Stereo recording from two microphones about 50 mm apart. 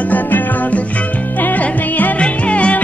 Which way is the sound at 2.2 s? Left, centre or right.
Left.